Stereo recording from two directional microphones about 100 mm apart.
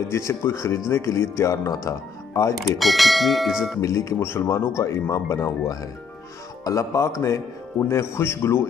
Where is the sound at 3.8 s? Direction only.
30° left (ahead or behind).